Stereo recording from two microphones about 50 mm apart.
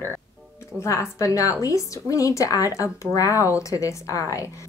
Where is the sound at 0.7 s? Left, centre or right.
Left.